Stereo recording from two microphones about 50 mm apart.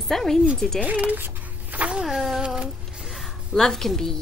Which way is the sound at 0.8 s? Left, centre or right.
Right.